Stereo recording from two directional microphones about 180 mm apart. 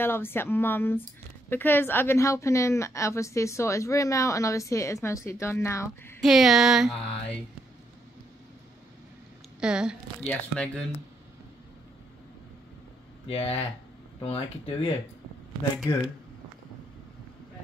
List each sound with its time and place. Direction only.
0.0 s a woman's voice: 10° left (ahead or behind)
6.2 s speech: centre (ahead or behind)
9.6 s speech: 5° right (ahead or behind)
10.5 s a woman's voice: 5° left (ahead or behind)
13.3 s speech: 30° left (ahead or behind)
15.9 s speech: 20° left (ahead or behind)